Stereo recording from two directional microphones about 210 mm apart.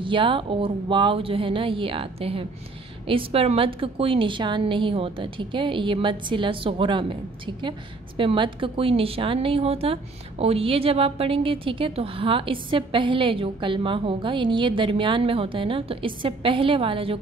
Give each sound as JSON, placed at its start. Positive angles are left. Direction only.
{"t": 0.0, "sound": "a woman's voice", "side_deg": -25}